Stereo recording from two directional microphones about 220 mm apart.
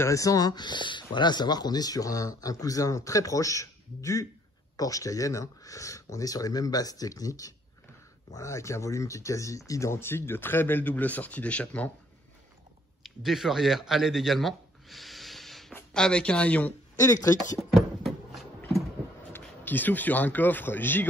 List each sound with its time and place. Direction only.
0.0 s speech: 15° left (ahead or behind)
13.0 s speech: centre (ahead or behind)
17.7 s a sound: centre (ahead or behind)
19.3 s speech: 10° left (ahead or behind)